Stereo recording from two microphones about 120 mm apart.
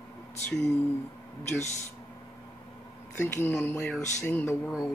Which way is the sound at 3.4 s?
20° left (ahead or behind).